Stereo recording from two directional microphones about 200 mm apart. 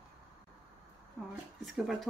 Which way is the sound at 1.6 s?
Centre (ahead or behind).